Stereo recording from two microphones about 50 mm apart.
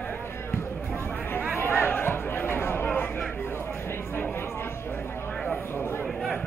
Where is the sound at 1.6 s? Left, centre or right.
Left.